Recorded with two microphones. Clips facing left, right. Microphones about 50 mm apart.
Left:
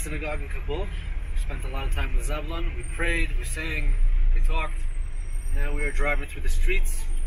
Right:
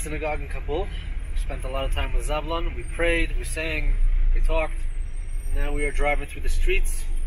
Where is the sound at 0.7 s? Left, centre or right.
Right.